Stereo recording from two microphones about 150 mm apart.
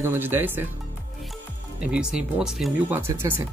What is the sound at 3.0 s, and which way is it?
Speech, 15° right (ahead or behind).